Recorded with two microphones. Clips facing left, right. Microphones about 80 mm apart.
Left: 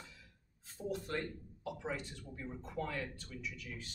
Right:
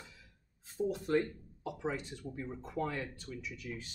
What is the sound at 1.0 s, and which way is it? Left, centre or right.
Speech, right.